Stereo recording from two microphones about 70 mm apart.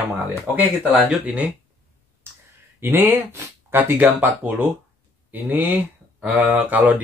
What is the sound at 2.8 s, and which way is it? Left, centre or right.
Speech, right.